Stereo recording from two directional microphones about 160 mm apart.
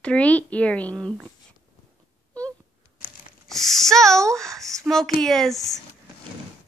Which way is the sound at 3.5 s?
Centre (ahead or behind).